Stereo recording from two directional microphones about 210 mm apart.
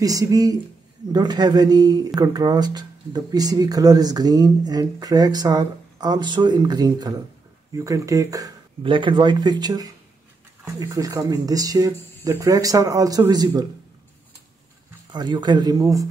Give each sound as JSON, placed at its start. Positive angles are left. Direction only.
{"t": 0.0, "sound": "speech", "side_deg": -15}
{"t": 15.1, "sound": "speech", "side_deg": -20}